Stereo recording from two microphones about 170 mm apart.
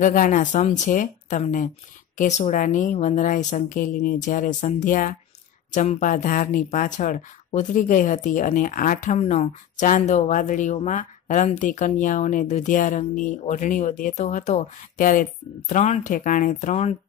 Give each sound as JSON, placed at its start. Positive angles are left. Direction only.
{"t": 0.0, "sound": "speech", "side_deg": 50}